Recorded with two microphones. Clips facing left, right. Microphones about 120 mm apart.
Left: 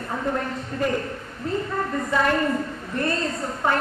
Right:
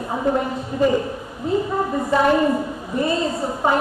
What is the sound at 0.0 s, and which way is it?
A woman's voice, 20° right (ahead or behind).